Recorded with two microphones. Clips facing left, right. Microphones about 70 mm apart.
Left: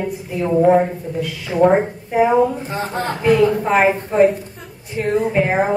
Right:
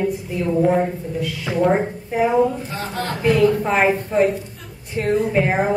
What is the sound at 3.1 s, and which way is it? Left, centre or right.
Speech, centre.